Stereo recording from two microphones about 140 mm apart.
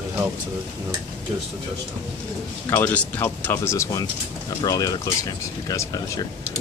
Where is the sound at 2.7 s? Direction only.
10° left (ahead or behind).